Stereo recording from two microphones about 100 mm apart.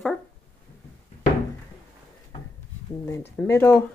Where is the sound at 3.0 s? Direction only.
30° left (ahead or behind).